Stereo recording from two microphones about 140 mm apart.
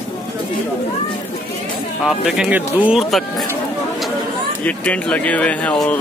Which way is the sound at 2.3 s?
5° right (ahead or behind).